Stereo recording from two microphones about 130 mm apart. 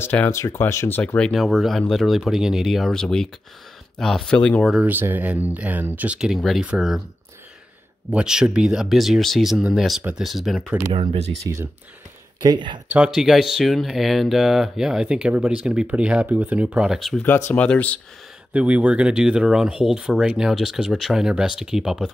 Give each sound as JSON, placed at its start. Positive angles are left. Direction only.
{"t": 0.0, "sound": "speech", "side_deg": 15}
{"t": 4.7, "sound": "speech", "side_deg": -15}
{"t": 8.1, "sound": "speech", "side_deg": -5}
{"t": 10.9, "sound": "speech", "side_deg": -45}
{"t": 11.4, "sound": "speech", "side_deg": -20}
{"t": 12.4, "sound": "speech", "side_deg": -35}
{"t": 12.9, "sound": "speech", "side_deg": -5}
{"t": 17.5, "sound": "speech", "side_deg": 10}
{"t": 18.5, "sound": "speech", "side_deg": -10}